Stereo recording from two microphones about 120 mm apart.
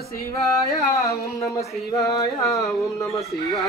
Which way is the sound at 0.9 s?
25° left (ahead or behind).